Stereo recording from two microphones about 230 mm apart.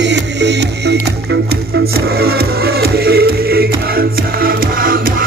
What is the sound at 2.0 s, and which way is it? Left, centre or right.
Music, right.